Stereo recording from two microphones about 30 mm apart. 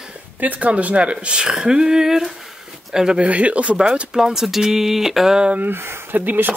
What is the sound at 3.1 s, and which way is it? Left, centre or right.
Speech, right.